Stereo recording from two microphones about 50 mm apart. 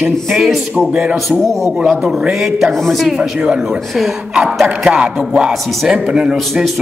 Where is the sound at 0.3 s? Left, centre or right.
Centre.